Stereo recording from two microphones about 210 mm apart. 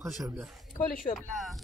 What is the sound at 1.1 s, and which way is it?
Speech, centre (ahead or behind).